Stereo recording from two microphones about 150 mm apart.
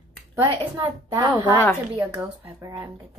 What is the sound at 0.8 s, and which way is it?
Speech, 20° right (ahead or behind).